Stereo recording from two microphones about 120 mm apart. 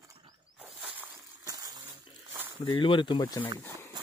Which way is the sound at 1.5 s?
30° right (ahead or behind).